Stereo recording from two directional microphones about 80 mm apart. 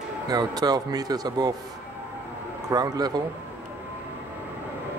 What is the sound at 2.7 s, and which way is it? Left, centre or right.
Speech, right.